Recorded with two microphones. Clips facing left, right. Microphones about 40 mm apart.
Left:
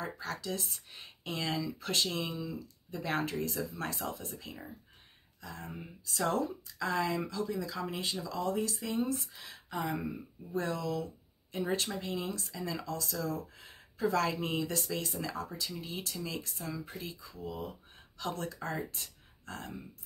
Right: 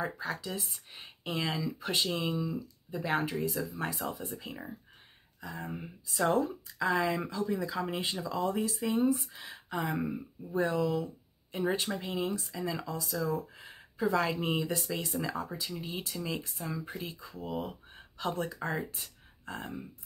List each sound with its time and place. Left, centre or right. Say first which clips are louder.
0.0 s speech: right 3 dB; centre
1.2 s speech: right 2 dB; centre
4.4 s speech: right 4 dB; centre
17.4 s speech: right 4 dB; right